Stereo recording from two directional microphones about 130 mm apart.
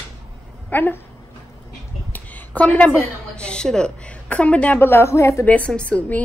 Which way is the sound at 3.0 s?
10° left (ahead or behind).